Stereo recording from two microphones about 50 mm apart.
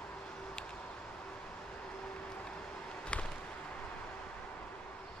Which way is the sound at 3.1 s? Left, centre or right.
Left.